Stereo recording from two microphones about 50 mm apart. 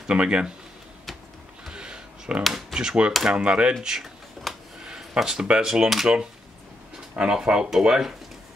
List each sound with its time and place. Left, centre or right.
0.1 s speech: right
1.7 s a sound: centre
2.7 s speech: centre
4.5 s a sound: centre
4.8 s speech: centre
7.2 s speech: centre